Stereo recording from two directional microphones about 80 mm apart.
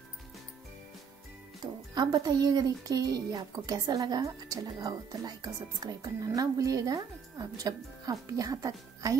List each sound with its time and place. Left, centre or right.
1.6 s speech: right